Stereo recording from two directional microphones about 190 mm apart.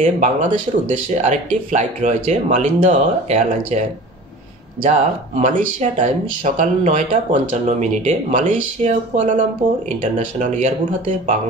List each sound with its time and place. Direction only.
0.0 s speech: 40° right (ahead or behind)
4.8 s speech: 40° right (ahead or behind)